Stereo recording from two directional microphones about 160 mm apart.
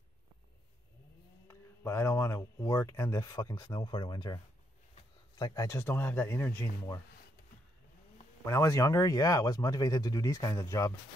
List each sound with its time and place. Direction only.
1.5 s speech: 15° left (ahead or behind)
5.4 s speech: 20° left (ahead or behind)
8.5 s speech: 20° left (ahead or behind)